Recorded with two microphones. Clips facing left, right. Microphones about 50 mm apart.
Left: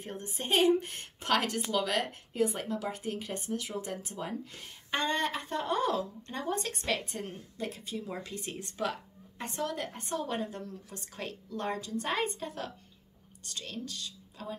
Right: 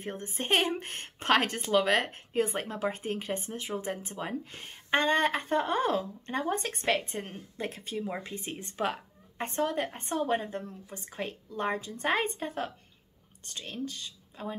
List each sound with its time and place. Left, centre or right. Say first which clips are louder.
0.0 s a woman's voice: right 3 dB; right
8.1 s a woman's voice: right 2 dB; right